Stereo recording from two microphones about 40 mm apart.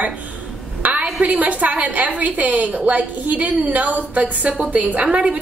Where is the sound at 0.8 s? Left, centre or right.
Right.